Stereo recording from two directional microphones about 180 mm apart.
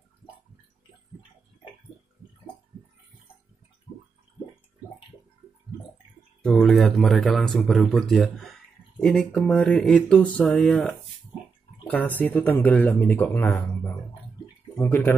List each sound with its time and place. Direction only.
6.4 s speech: 5° left (ahead or behind)
14.8 s speech: 10° left (ahead or behind)